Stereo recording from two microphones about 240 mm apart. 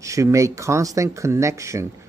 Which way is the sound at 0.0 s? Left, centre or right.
Centre.